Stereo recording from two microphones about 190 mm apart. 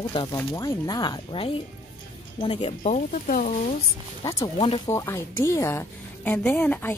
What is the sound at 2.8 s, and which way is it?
Speech, 40° left (ahead or behind).